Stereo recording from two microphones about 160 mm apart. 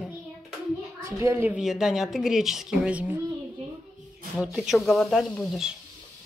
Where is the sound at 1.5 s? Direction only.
5° right (ahead or behind).